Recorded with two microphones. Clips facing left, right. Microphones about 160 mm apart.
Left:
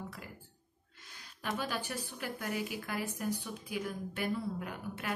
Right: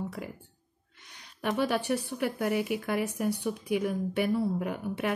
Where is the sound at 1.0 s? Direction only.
70° right (ahead or behind).